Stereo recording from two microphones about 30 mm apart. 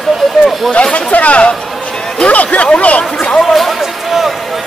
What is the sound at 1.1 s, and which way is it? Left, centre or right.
A man's voice, left.